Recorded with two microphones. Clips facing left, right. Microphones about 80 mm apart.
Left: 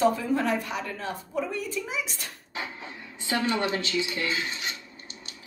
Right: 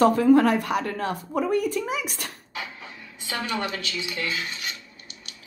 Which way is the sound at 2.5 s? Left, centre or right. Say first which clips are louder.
Left 5 dB; left.